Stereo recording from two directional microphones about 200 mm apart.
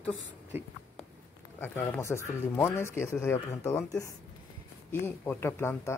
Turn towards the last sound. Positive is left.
turn(degrees=10)  # may be behind; listen again after turning